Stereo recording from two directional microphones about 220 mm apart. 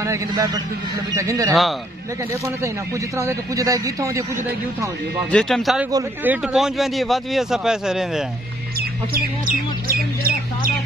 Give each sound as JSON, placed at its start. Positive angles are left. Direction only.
{"t": 0.0, "sound": "a man's voice", "side_deg": -15}
{"t": 3.2, "sound": "a man's voice", "side_deg": -15}
{"t": 5.3, "sound": "a man's voice", "side_deg": 0}
{"t": 5.9, "sound": "a man's voice", "side_deg": -10}
{"t": 9.8, "sound": "speech", "side_deg": -40}